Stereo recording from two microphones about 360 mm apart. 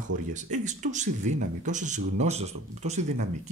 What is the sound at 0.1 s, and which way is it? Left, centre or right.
Speech, right.